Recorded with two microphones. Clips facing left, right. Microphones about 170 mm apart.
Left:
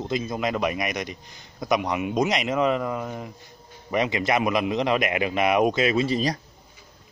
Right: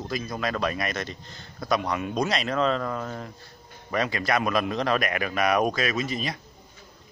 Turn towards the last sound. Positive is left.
turn(degrees=35)  # may be behind; listen again after turning